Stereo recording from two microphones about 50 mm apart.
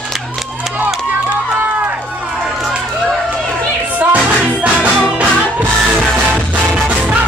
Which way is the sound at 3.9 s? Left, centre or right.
Right.